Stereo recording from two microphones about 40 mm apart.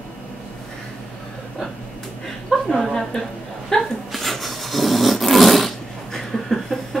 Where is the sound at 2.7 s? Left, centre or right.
Centre.